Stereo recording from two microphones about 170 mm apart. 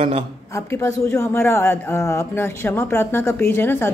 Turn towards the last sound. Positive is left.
turn(degrees=15)  # may be behind; listen again after turning